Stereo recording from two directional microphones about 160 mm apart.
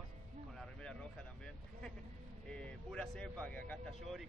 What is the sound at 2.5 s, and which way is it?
Speech, 5° left (ahead or behind).